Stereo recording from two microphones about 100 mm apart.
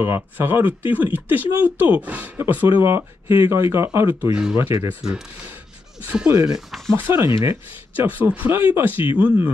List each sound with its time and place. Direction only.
0.0 s speech: 20° right (ahead or behind)
6.2 s speech: 10° right (ahead or behind)
7.1 s speech: 25° right (ahead or behind)